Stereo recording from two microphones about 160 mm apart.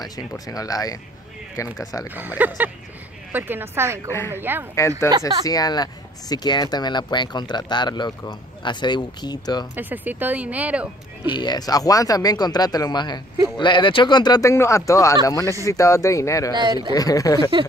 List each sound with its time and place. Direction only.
0.0 s speech: 20° left (ahead or behind)
2.0 s speech: 10° right (ahead or behind)
5.5 s speech: 25° left (ahead or behind)
9.8 s speech: 10° right (ahead or behind)
11.3 s speech: 25° left (ahead or behind)
16.5 s speech: 30° right (ahead or behind)
16.9 s speech: 20° left (ahead or behind)